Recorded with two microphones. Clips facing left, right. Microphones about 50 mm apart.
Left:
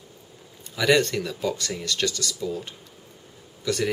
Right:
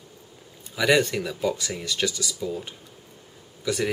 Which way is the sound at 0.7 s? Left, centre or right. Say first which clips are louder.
Even; centre.